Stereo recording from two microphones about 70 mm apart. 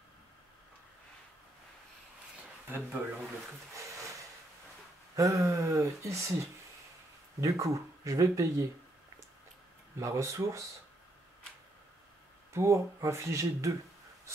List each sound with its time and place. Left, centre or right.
3.0 s speech: centre
3.7 s a sound: right
5.1 s speech: right
9.9 s speech: right
12.5 s speech: right